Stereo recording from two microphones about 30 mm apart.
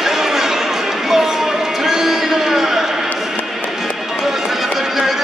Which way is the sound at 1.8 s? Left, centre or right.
Centre.